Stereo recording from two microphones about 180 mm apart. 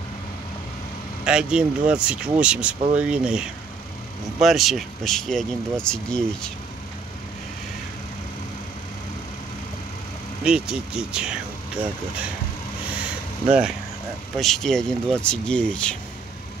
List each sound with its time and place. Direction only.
1.2 s speech: 5° right (ahead or behind)
10.4 s speech: 5° right (ahead or behind)
13.5 s speech: 5° right (ahead or behind)